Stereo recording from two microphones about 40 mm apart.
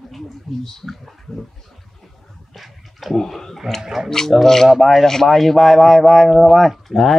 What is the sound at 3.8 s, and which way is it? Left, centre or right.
Speech, centre.